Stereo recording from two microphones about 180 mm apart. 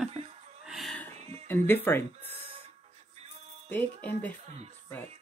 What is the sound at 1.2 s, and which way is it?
Music, 35° right (ahead or behind).